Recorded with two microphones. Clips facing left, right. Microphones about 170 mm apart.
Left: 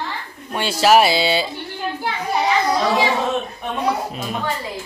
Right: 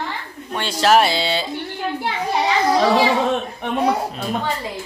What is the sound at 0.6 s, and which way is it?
Speech, 5° left (ahead or behind).